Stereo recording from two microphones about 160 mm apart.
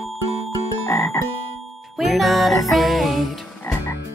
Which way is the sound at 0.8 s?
15° left (ahead or behind).